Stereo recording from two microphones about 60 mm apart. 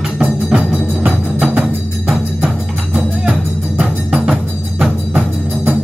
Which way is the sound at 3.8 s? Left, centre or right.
Right.